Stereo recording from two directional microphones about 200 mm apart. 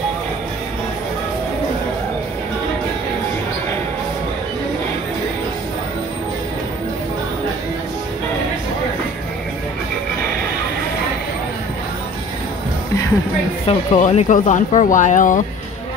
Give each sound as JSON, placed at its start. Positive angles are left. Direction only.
{"t": 13.7, "sound": "speech", "side_deg": 35}